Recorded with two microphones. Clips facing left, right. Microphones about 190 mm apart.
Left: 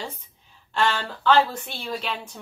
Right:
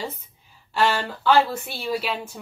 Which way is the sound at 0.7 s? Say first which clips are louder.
Right 2 dB; 10° right (ahead or behind).